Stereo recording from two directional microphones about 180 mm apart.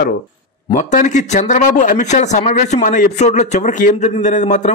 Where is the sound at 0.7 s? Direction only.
45° left (ahead or behind).